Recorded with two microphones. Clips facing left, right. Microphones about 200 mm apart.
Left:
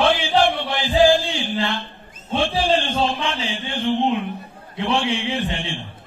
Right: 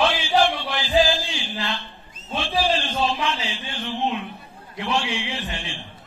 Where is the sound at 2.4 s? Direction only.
60° left (ahead or behind).